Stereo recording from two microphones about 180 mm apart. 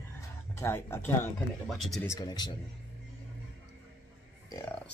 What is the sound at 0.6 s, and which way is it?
Speech, 15° left (ahead or behind).